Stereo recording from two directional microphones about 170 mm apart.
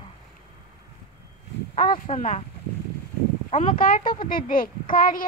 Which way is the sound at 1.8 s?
40° left (ahead or behind).